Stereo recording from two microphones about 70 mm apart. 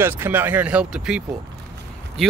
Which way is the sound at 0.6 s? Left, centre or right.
Centre.